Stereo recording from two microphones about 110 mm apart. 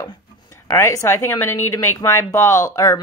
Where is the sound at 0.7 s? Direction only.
30° left (ahead or behind).